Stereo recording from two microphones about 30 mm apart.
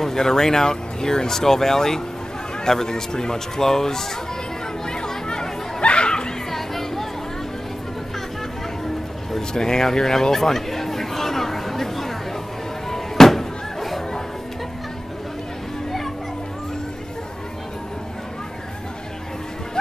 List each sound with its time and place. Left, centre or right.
0.0 s a man's voice: centre
4.8 s chatter: left
5.8 s chatter: left
6.5 s music: centre
9.5 s chatter: left
12.9 s a sound: centre